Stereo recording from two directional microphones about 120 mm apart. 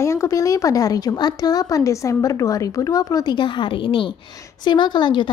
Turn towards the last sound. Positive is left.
turn(degrees=40)  # may be behind; listen again after turning